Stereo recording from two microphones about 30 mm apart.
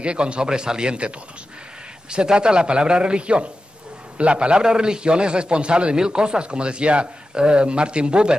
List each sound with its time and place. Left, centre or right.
0.0 s a man's voice: right
2.0 s a man's voice: right